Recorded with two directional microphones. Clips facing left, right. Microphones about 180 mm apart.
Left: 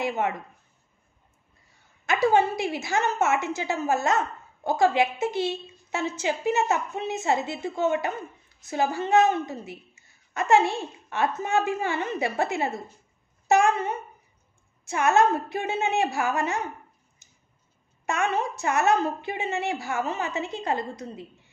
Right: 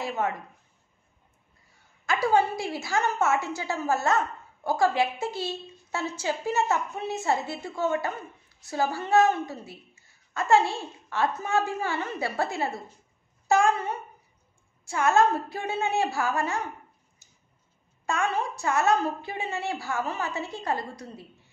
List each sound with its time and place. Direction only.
0.0 s speech: 20° left (ahead or behind)
2.0 s a woman's voice: 20° left (ahead or behind)
17.2 s tick-tock: 20° left (ahead or behind)
18.0 s a woman's voice: 20° left (ahead or behind)